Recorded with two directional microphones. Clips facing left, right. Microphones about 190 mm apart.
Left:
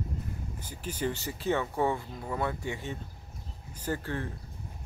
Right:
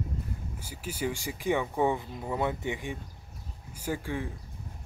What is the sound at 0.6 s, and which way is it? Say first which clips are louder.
Speech: even; 10° right (ahead or behind).